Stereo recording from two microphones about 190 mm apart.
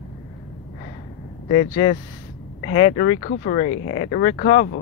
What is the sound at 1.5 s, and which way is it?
Speech, 45° left (ahead or behind).